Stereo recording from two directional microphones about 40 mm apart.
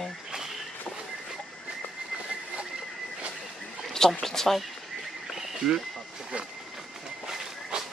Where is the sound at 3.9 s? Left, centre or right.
Centre.